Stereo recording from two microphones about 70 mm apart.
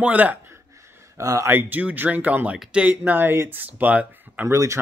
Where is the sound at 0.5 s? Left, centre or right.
Right.